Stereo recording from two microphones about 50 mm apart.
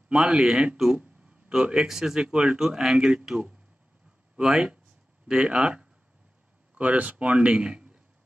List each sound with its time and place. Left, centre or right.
0.1 s speech: centre
0.9 s a sound: centre
1.9 s speech: centre
2.2 s speech: right
4.4 s speech: centre
6.7 s speech: right